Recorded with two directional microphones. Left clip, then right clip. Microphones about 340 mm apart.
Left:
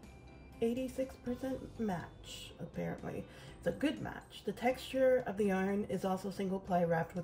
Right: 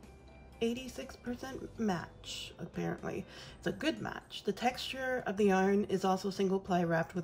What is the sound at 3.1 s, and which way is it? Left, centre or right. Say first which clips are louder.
Speech: right 3 dB; centre.